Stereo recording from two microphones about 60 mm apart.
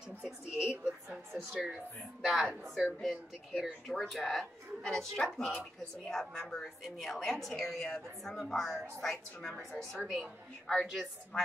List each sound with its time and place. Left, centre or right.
0.6 s a sound: centre
2.2 s a woman's voice: centre
10.0 s a woman's voice: centre